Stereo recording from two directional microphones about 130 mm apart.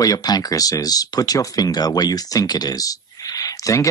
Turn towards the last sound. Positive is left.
turn(degrees=25)  # may be behind; listen again after turning